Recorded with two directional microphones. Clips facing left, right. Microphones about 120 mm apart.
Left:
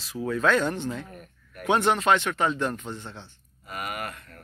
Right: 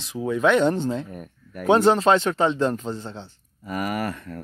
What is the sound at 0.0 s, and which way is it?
Speech, 20° right (ahead or behind).